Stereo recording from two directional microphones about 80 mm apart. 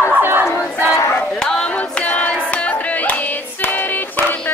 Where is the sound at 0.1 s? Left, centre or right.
Right.